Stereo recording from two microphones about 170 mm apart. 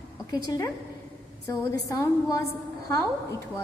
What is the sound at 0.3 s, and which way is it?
A woman's voice, 25° left (ahead or behind).